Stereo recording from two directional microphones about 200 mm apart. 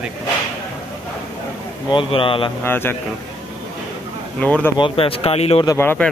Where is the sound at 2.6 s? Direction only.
10° left (ahead or behind).